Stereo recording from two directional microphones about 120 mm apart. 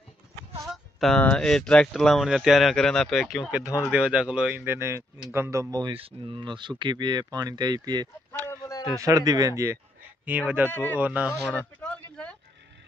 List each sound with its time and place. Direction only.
0.7 s speech: centre (ahead or behind); by 5.9 s 35° right (ahead or behind)
5.9 s speech: 45° right (ahead or behind)
8.5 s a sound: 30° left (ahead or behind)
8.9 s speech: 30° right (ahead or behind)
10.7 s speech: 15° left (ahead or behind)
11.0 s speech: 10° right (ahead or behind)
11.5 s a sound: 10° left (ahead or behind)